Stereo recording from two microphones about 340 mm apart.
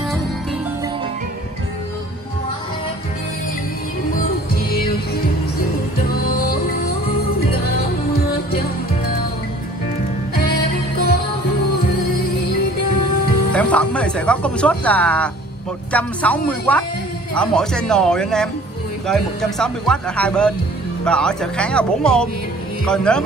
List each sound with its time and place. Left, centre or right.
4.1 s music: left
10.5 s music: left
13.5 s music: centre
15.9 s speech: centre